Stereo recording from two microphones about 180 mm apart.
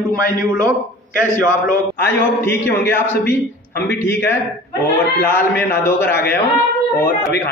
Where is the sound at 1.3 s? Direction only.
50° left (ahead or behind).